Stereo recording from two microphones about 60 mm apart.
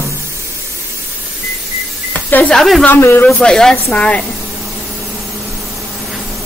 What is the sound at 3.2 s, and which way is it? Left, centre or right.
A woman's voice, centre.